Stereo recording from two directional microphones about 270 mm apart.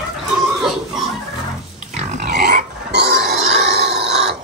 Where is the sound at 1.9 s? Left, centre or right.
Right.